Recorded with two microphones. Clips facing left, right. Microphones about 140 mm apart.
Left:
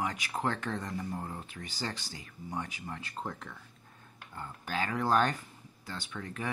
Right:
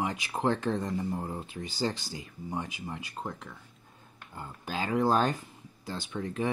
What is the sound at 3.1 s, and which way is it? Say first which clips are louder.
Speech: right 1 dB; centre (ahead or behind).